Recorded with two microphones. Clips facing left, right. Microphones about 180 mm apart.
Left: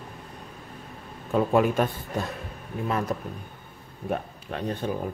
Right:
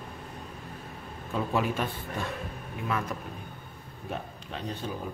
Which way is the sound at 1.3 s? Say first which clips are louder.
Left 7 dB; 50° left (ahead or behind).